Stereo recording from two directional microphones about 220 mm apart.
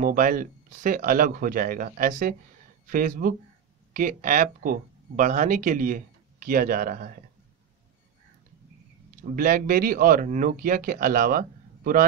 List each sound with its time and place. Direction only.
0.0 s speech: 40° right (ahead or behind)
9.3 s speech: 40° right (ahead or behind)